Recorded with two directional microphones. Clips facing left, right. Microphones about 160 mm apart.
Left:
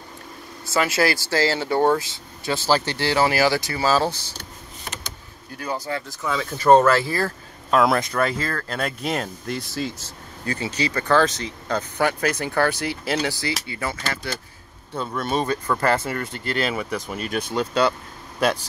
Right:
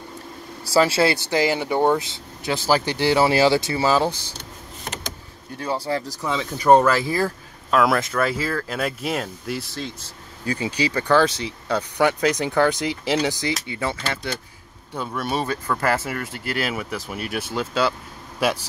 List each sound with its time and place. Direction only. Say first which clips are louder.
0.7 s speech: right 3 dB; 30° right (ahead or behind)
5.6 s speech: right 3 dB; 30° right (ahead or behind)
6.2 s speech: left 4 dB; 20° right (ahead or behind)
6.7 s speech: even; 10° right (ahead or behind)
10.4 s speech: right 2 dB; 10° right (ahead or behind)
15.0 s speech: left 1 dB; 10° right (ahead or behind)